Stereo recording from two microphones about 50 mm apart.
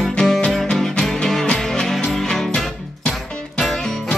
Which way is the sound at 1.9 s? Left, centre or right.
Centre.